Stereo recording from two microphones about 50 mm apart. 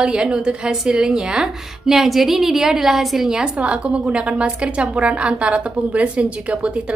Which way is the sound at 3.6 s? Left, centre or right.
Right.